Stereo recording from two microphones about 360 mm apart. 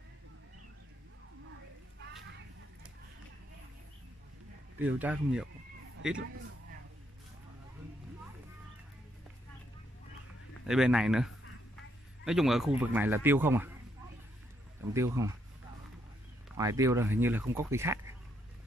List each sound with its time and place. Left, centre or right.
4.7 s speech: centre
10.7 s speech: centre
14.8 s speech: centre
16.4 s speech: centre